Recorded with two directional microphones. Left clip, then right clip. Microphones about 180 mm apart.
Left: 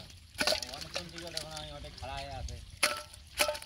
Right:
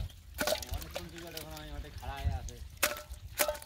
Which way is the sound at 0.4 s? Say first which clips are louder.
Left 2 dB; 15° right (ahead or behind).